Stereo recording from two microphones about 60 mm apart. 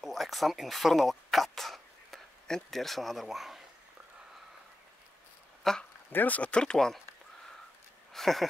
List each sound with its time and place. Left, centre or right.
0.0 s speech: centre
5.6 s speech: centre
6.1 s speech: left; by 7.0 s centre
8.1 s speech: centre